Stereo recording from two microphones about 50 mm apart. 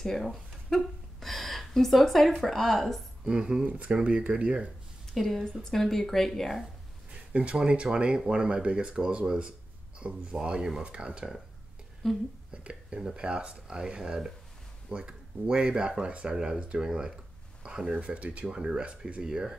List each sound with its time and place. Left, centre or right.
0.0 s speech: centre
3.3 s speech: centre
5.1 s speech: centre
7.3 s speech: right
12.0 s speech: centre
13.0 s speech: centre
19.2 s speech: centre